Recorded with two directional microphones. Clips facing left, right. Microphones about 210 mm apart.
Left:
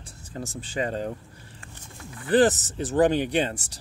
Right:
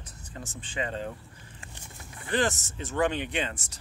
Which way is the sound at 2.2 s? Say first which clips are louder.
Left 8 dB; 35° left (ahead or behind).